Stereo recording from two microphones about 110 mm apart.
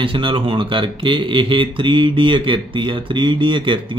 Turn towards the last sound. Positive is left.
turn(degrees=-50)  # may be behind; listen again after turning